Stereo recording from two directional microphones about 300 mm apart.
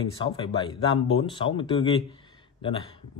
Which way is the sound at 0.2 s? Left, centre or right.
Centre.